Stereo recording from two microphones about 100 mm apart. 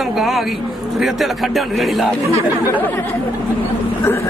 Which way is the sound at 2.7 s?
20° left (ahead or behind).